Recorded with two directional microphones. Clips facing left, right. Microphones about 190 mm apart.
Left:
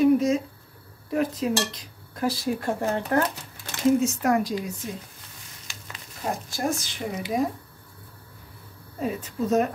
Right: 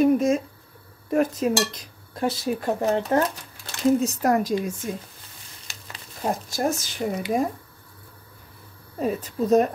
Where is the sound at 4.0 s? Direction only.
40° right (ahead or behind).